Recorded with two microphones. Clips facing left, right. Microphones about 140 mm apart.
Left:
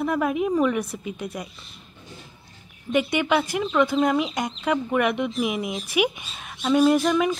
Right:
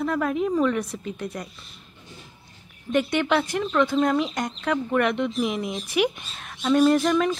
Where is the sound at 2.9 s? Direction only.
10° left (ahead or behind).